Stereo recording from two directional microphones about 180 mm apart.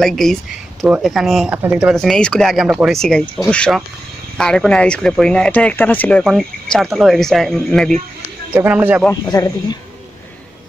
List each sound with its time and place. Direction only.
0.0 s speech: centre (ahead or behind)
8.5 s speech: 10° right (ahead or behind)
9.2 s speech: 20° left (ahead or behind)